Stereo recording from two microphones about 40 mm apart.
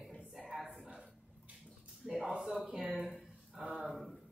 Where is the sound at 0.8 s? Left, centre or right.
Right.